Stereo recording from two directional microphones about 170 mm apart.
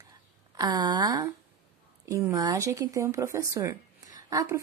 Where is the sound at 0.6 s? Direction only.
25° right (ahead or behind).